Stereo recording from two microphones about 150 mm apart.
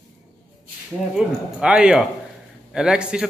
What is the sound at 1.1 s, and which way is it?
Speech, 5° right (ahead or behind).